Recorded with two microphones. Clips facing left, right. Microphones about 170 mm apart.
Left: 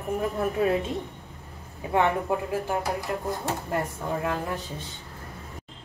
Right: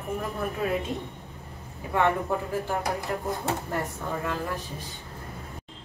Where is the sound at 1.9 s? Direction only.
20° left (ahead or behind).